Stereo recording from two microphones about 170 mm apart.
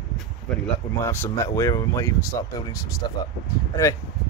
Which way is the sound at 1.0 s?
15° left (ahead or behind).